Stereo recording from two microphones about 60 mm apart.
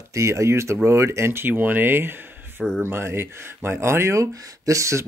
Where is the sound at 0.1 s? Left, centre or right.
Right.